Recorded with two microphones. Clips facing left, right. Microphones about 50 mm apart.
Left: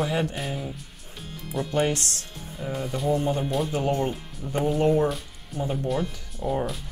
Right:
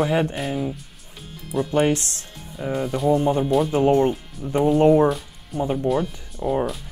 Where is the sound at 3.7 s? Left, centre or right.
Right.